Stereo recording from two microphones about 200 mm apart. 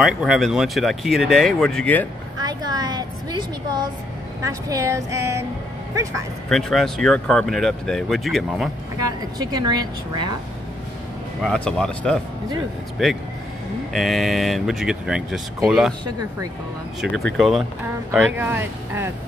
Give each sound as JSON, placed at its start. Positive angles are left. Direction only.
{"t": 0.0, "sound": "speech", "side_deg": -5}
{"t": 2.3, "sound": "a sound", "side_deg": -20}
{"t": 4.4, "sound": "speech", "side_deg": -15}
{"t": 6.5, "sound": "speech", "side_deg": 0}
{"t": 9.4, "sound": "a woman's voice", "side_deg": -20}
{"t": 11.4, "sound": "speech", "side_deg": 5}
{"t": 17.0, "sound": "speech", "side_deg": 0}